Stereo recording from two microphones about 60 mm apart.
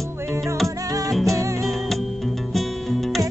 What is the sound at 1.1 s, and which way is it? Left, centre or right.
Music, centre.